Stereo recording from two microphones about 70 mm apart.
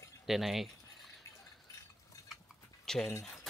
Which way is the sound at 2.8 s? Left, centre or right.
Centre.